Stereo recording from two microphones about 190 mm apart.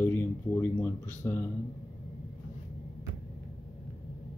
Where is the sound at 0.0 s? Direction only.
10° left (ahead or behind).